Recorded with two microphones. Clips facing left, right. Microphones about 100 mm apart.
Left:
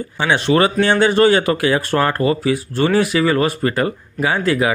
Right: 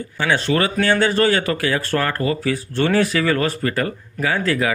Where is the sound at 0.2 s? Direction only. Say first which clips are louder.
Left 4 dB; 25° left (ahead or behind).